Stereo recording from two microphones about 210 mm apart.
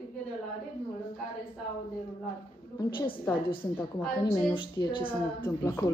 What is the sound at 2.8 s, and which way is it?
Speech, 20° left (ahead or behind).